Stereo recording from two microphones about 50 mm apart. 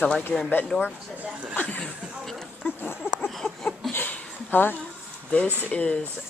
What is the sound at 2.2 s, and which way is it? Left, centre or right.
Speech, centre.